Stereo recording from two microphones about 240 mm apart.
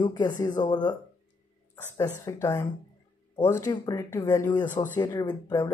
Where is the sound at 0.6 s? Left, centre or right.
Centre.